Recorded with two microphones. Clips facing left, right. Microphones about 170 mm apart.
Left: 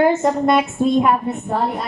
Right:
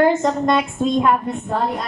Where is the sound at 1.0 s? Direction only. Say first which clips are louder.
Even; 5° left (ahead or behind).